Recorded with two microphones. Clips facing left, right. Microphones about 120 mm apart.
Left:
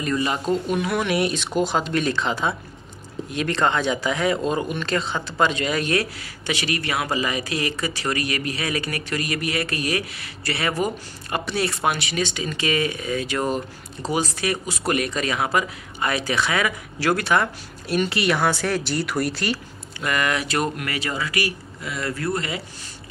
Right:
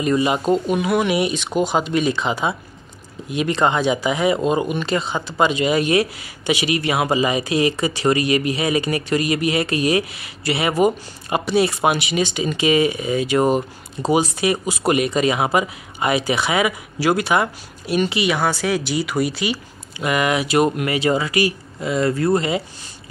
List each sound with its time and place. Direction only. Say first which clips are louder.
0.0 s speech: right 5 dB; 15° right (ahead or behind)
20.0 s speech: right 4 dB; 15° right (ahead or behind)